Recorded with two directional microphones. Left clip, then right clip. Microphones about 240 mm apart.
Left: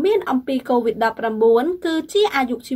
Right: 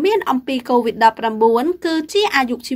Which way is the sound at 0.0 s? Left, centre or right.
Right.